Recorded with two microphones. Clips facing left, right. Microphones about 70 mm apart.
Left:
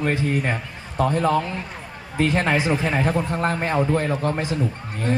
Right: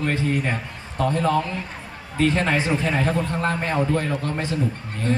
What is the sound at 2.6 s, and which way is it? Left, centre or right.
A man's voice, centre.